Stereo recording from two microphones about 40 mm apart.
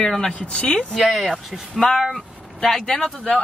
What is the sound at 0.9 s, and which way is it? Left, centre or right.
Speech, centre.